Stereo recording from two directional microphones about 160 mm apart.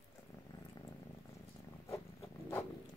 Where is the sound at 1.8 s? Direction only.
20° left (ahead or behind).